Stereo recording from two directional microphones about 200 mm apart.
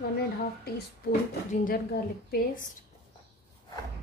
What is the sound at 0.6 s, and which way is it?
A woman's voice, 45° left (ahead or behind).